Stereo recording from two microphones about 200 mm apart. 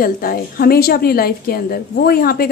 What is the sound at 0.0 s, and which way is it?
A woman's voice, 45° left (ahead or behind).